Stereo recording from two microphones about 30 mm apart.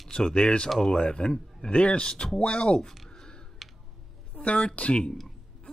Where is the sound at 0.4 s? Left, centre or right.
Left.